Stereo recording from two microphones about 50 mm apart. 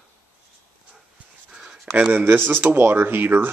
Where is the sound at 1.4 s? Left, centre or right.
Centre.